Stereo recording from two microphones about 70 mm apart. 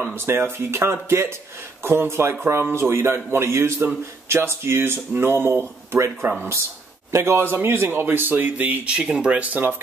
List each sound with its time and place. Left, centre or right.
0.0 s a man's voice: right